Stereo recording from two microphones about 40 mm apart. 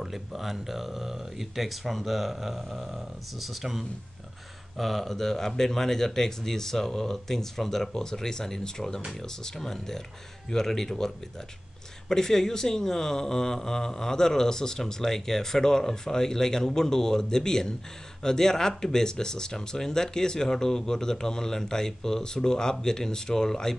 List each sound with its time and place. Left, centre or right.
0.0 s speech: centre